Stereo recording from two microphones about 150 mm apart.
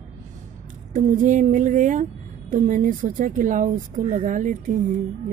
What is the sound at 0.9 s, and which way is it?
A woman's voice, 60° right (ahead or behind).